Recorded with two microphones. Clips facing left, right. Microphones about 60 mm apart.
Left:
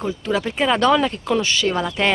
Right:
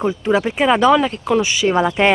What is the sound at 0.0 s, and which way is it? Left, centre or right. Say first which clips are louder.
Speech: right 5 dB; right.